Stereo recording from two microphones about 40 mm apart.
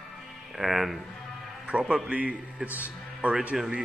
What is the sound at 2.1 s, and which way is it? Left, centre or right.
A man's voice, right.